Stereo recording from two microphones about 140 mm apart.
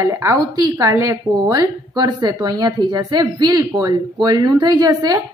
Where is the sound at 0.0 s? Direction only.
20° right (ahead or behind).